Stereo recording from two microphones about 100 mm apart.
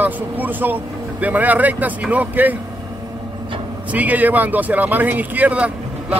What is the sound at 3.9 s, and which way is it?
Speech, 15° right (ahead or behind).